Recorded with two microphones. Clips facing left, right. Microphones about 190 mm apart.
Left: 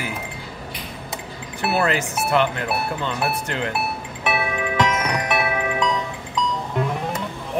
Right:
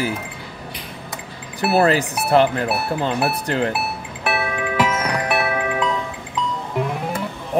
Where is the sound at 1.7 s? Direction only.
35° right (ahead or behind).